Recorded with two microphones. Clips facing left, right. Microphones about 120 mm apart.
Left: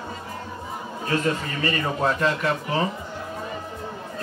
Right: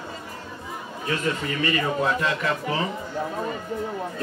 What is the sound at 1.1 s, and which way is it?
Speech, 35° left (ahead or behind).